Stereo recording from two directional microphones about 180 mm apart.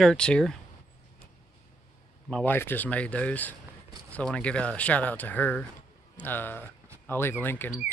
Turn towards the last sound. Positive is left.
turn(degrees=10)  # may be behind; listen again after turning